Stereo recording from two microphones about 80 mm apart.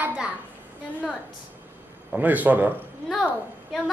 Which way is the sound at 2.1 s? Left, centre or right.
Right.